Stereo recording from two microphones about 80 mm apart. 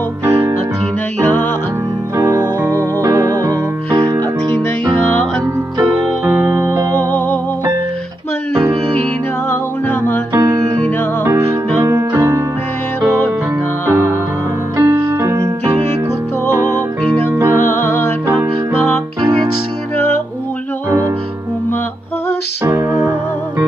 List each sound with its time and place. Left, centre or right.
0.2 s music: right
1.2 s music: left
2.1 s keyboard: right
3.0 s music: right
4.9 s music: left
6.2 s music: right
7.0 s music: left
9.5 s music: left
11.2 s music: right
14.8 s music: right
16.5 s music: right
17.0 s music: centre